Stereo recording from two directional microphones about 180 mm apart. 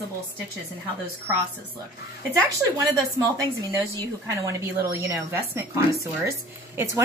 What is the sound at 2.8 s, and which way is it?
A woman's voice, 20° right (ahead or behind).